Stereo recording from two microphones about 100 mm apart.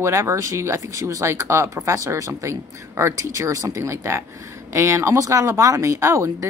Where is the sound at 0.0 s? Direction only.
25° right (ahead or behind).